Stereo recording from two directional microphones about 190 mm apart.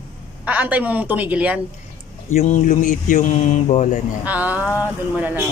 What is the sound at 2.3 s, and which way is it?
Speech, 40° left (ahead or behind).